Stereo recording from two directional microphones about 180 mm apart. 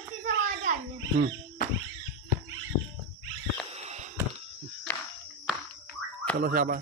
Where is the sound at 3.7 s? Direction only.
40° right (ahead or behind).